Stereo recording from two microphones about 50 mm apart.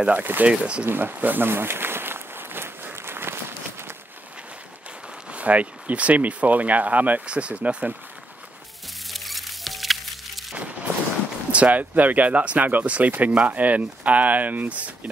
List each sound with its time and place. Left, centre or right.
0.0 s speech: right
0.8 s a sound: right
5.3 s speech: right
9.1 s music: centre
11.5 s speech: right